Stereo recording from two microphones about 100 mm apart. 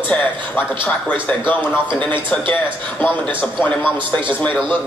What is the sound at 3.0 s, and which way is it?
Speech, 20° left (ahead or behind).